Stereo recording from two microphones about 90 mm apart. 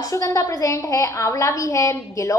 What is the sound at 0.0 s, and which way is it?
A woman's voice, 40° left (ahead or behind).